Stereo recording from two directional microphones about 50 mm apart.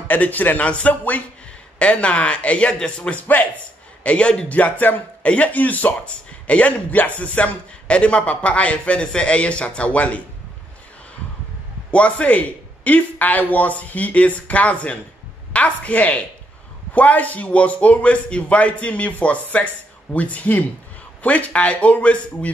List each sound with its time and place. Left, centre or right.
0.1 s a man's voice: left
11.9 s a man's voice: left